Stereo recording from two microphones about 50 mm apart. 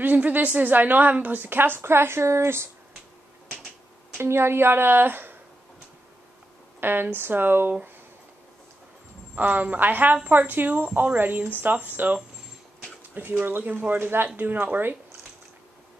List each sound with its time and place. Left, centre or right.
0.0 s a woman's voice: right
4.2 s a woman's voice: right
6.8 s a woman's voice: right
9.3 s a woman's voice: right
13.9 s a woman's voice: right